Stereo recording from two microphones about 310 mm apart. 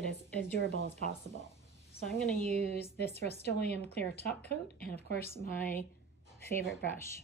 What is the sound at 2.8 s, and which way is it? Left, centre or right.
Speech, centre.